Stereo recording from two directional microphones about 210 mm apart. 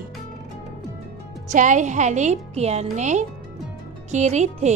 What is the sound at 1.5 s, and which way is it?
A woman's voice, 35° right (ahead or behind).